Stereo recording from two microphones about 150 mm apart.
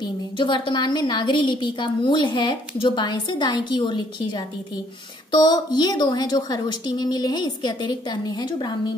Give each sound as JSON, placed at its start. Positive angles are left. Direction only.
{"t": 0.0, "sound": "a woman's voice", "side_deg": 30}